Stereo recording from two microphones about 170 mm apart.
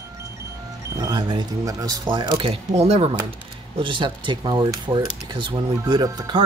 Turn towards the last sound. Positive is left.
turn(degrees=-25)  # may be behind; listen again after turning